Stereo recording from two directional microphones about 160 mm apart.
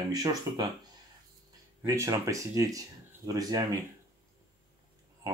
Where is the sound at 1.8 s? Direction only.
20° right (ahead or behind).